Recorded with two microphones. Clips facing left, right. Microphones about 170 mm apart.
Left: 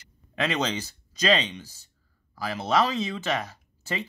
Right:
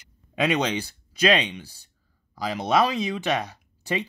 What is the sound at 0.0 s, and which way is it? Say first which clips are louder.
Speech: right 4 dB; 15° right (ahead or behind).